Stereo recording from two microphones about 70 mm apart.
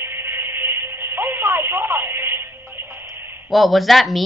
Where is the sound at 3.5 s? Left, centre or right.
Centre.